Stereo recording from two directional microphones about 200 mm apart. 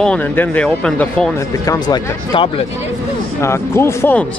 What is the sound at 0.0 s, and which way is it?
Speech, 5° left (ahead or behind).